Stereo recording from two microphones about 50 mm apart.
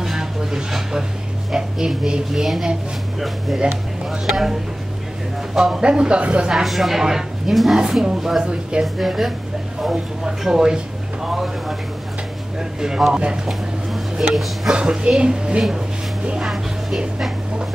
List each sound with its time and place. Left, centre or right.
0.0 s a sound: centre
1.5 s speech: centre
4.1 s a woman's voice: centre; by 6.5 s right
6.5 s speech: centre
14.3 s speech: centre
14.7 s speech: centre